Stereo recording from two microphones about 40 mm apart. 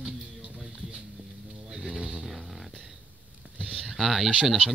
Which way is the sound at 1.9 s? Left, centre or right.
Right.